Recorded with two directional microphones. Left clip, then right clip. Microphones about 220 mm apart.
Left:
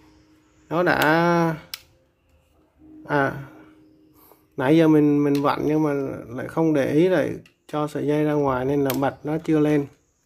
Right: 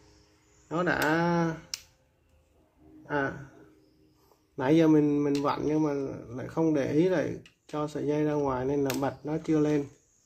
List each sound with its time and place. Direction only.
0.7 s speech: 30° left (ahead or behind)
3.1 s a sound: 35° left (ahead or behind)
4.6 s speech: 25° left (ahead or behind)